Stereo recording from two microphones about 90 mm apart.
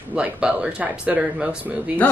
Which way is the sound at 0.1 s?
15° right (ahead or behind).